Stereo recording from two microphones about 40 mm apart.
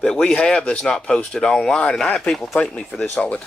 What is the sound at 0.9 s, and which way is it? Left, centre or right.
Speech, left.